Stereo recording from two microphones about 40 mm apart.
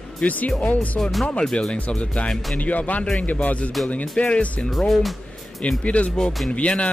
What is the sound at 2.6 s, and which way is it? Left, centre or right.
Speech, left.